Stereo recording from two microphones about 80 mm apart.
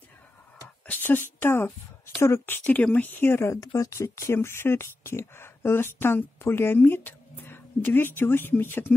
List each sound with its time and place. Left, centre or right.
0.8 s a woman's voice: left
2.6 s speech: centre
3.6 s speech: left